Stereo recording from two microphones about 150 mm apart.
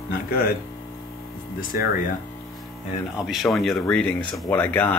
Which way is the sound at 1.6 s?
65° left (ahead or behind).